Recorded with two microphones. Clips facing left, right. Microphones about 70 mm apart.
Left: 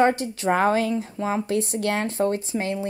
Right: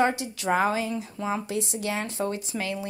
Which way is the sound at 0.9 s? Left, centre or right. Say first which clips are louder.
Left 4 dB; left.